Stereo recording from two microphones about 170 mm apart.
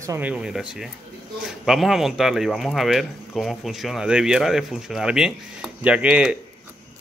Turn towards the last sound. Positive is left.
turn(degrees=-5)  # may be behind; listen again after turning